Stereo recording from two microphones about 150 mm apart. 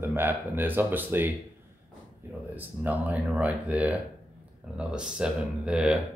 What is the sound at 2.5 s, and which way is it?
Speech, 10° right (ahead or behind).